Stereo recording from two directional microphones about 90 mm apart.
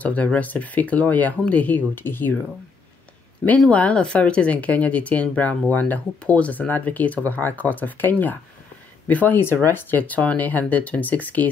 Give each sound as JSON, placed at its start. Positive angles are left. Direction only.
{"t": 0.0, "sound": "speech", "side_deg": 15}
{"t": 3.4, "sound": "speech", "side_deg": 15}